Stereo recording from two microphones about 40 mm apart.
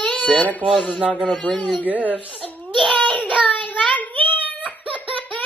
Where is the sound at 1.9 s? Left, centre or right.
Right.